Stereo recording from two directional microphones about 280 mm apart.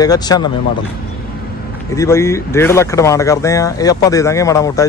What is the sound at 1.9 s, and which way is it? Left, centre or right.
Speech, centre.